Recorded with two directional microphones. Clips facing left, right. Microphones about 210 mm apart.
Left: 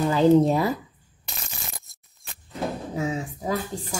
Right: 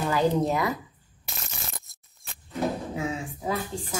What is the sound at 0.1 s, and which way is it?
Speech, 30° left (ahead or behind).